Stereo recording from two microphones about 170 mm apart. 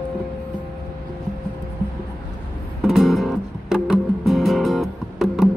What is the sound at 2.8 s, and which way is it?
Music, centre (ahead or behind).